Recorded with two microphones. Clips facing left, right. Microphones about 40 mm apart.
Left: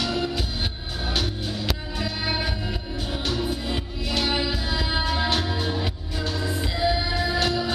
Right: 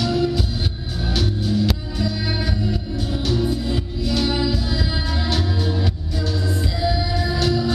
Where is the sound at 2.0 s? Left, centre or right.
Left.